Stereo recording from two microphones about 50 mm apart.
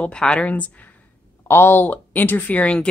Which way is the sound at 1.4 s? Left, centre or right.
Left.